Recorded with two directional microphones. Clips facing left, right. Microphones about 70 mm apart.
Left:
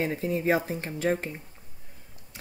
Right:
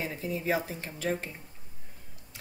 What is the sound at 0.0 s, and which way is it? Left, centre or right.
Speech, left.